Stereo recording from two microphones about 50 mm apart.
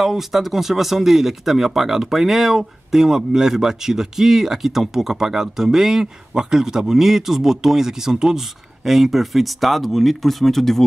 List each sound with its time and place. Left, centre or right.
0.0 s speech: centre